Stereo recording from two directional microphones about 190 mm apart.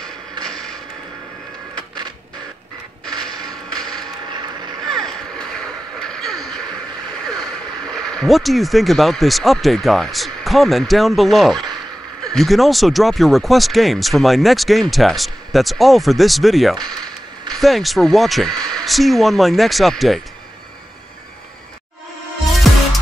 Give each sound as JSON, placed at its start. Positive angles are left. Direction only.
{"t": 0.5, "sound": "creak", "side_deg": 5}
{"t": 3.9, "sound": "vehicle", "side_deg": -20}
{"t": 4.8, "sound": "a sound", "side_deg": 5}
{"t": 7.2, "sound": "speech", "side_deg": 5}
{"t": 22.7, "sound": "music", "side_deg": 0}